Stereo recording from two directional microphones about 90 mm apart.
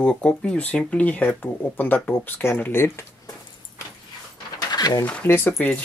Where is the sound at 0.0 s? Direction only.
10° left (ahead or behind); by 3.1 s 25° left (ahead or behind).